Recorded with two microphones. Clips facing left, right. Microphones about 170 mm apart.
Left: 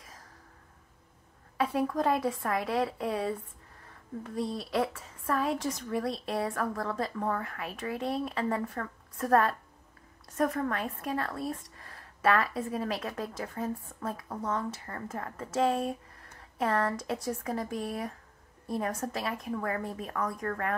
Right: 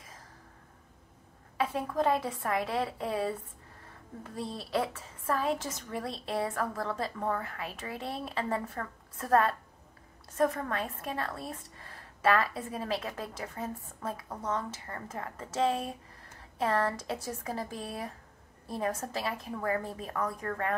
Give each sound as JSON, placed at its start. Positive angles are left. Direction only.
{"t": 1.6, "sound": "a woman's voice", "side_deg": -25}
{"t": 4.4, "sound": "a woman's voice", "side_deg": -30}